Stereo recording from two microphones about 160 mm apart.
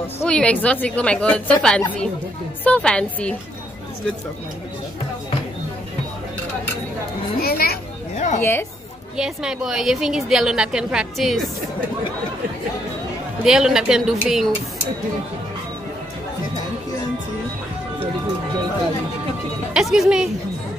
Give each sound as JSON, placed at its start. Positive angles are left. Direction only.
{"t": 0.2, "sound": "a woman's voice", "side_deg": 5}
{"t": 7.4, "sound": "speech", "side_deg": 75}
{"t": 8.4, "sound": "a woman's voice", "side_deg": 15}
{"t": 9.1, "sound": "a woman's voice", "side_deg": -5}
{"t": 13.4, "sound": "a woman's voice", "side_deg": -5}
{"t": 19.7, "sound": "speech", "side_deg": -5}